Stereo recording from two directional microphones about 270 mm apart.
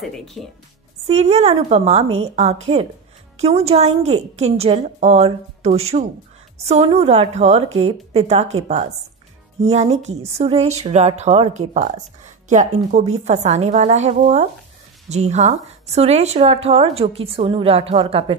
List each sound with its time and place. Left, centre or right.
0.0 s speech: centre
1.0 s speech: right